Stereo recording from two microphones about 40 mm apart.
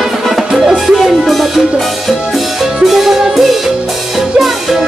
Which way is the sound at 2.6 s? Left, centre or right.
Centre.